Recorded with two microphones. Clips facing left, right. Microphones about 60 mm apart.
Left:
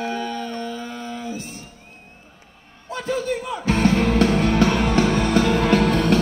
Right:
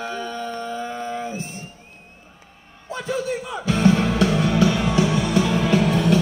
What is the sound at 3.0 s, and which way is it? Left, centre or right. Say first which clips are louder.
Music: left 1 dB; left.